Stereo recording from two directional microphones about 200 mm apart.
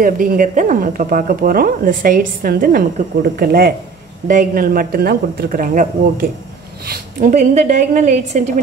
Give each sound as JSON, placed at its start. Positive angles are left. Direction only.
{"t": 0.0, "sound": "a woman's voice", "side_deg": -40}